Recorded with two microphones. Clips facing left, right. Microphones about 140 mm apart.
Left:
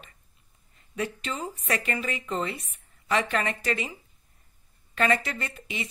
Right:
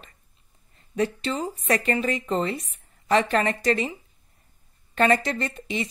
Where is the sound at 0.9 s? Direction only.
35° right (ahead or behind).